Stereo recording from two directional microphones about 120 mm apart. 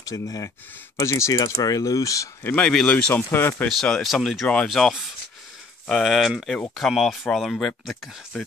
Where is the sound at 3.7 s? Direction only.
5° left (ahead or behind).